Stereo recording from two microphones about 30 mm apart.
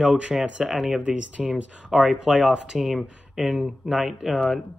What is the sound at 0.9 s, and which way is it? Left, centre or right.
Speech, right.